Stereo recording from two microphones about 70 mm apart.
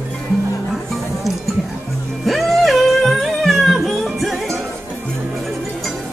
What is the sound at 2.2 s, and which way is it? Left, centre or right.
Music, centre.